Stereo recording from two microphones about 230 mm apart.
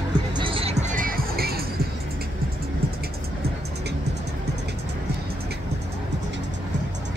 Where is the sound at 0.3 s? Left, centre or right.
Right.